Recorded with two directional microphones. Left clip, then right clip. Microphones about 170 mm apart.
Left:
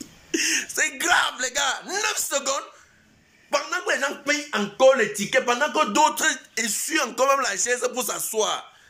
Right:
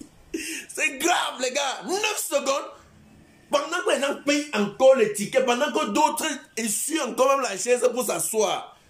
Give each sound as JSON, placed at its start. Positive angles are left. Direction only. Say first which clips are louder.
{"t": 0.3, "sound": "speech", "louder": "left 9 dB", "side_deg": -5}
{"t": 5.8, "sound": "music", "louder": "left 2 dB", "side_deg": -10}